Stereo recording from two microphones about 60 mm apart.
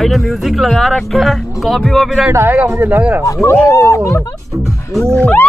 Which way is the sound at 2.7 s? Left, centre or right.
Right.